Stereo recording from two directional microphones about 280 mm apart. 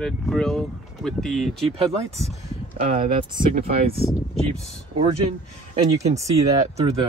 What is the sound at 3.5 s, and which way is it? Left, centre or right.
Speech, right.